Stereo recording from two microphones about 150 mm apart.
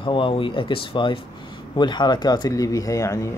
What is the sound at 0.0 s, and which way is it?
Speech, 35° left (ahead or behind).